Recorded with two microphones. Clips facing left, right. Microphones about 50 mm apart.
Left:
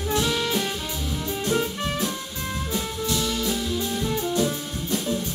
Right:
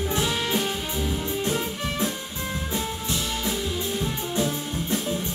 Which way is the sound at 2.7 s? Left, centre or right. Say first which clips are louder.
Left 4 dB; right.